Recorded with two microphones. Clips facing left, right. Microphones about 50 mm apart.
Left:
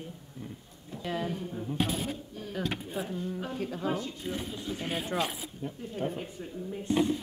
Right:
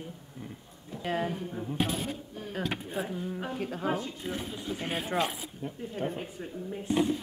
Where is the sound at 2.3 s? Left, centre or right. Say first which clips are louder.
Even; centre.